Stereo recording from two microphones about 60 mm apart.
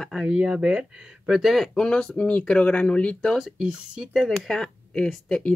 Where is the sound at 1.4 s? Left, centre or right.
Centre.